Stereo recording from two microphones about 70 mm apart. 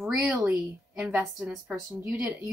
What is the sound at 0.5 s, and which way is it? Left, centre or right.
A woman's voice, centre.